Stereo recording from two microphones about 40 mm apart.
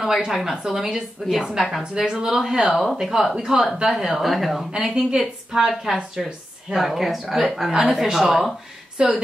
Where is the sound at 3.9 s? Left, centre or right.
Centre.